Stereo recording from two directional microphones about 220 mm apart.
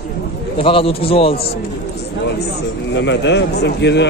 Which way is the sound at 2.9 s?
55° left (ahead or behind).